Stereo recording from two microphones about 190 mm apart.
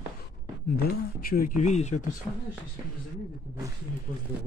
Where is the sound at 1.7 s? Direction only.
35° left (ahead or behind).